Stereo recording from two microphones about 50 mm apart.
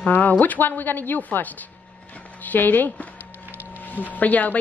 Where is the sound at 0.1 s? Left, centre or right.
Left.